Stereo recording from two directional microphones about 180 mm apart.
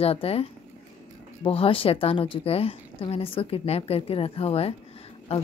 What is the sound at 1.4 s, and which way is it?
Speech, 30° left (ahead or behind).